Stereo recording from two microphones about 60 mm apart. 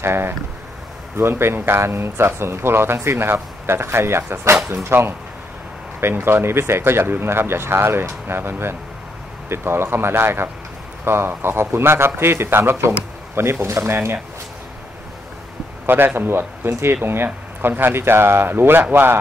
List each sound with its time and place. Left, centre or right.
0.0 s speech: right
16.2 s speech: right